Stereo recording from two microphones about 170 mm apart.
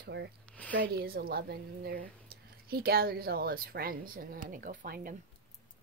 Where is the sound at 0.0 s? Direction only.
75° right (ahead or behind).